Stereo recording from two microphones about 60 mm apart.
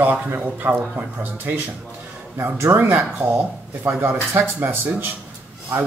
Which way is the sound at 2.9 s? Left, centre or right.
Right.